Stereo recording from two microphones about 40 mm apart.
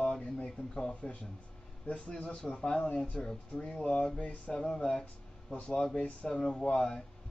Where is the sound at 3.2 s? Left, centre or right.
Centre.